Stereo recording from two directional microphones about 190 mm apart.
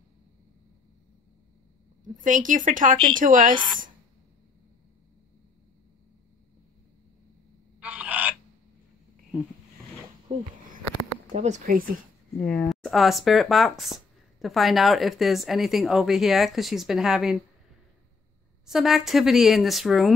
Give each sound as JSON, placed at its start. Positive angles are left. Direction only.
{"t": 2.1, "sound": "speech", "side_deg": -45}
{"t": 7.8, "sound": "fowl", "side_deg": -5}
{"t": 10.3, "sound": "speech", "side_deg": -30}
{"t": 12.4, "sound": "speech", "side_deg": 5}
{"t": 18.7, "sound": "speech", "side_deg": 0}